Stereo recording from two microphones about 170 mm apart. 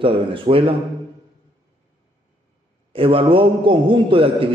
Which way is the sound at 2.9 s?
30° right (ahead or behind).